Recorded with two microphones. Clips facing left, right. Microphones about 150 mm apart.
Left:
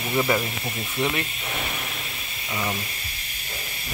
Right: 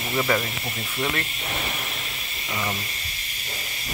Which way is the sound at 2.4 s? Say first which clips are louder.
Left 1 dB; 15° left (ahead or behind).